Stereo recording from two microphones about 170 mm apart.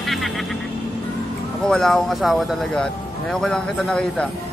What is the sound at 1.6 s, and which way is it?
Speech, 5° left (ahead or behind).